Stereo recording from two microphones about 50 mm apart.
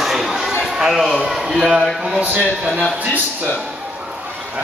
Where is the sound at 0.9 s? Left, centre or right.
Centre.